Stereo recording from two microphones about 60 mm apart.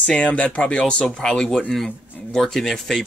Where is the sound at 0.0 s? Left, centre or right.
Centre.